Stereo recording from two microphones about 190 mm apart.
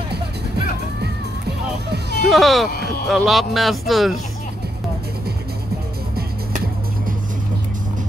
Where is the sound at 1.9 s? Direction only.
60° right (ahead or behind).